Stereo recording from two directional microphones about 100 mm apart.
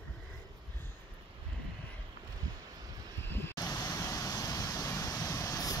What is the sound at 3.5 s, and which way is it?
Vehicle, 35° left (ahead or behind).